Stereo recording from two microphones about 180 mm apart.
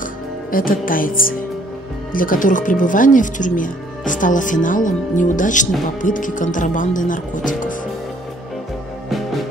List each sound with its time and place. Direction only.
0.5 s speech: 50° left (ahead or behind)